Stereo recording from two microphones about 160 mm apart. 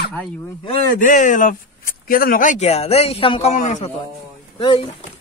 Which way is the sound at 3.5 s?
50° left (ahead or behind).